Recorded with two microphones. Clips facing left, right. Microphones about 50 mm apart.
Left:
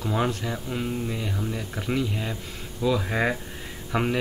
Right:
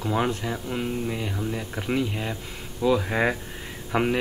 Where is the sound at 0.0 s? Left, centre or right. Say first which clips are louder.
Right 1 dB; centre.